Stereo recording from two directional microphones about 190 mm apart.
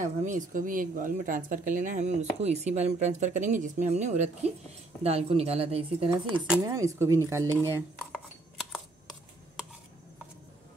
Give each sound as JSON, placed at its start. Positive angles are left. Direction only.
{"t": 0.0, "sound": "speech", "side_deg": -40}
{"t": 6.2, "sound": "speech", "side_deg": -5}
{"t": 6.6, "sound": "speech", "side_deg": -15}
{"t": 8.1, "sound": "a sound", "side_deg": 0}